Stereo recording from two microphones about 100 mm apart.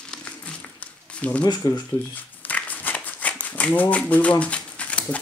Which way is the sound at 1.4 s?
40° left (ahead or behind).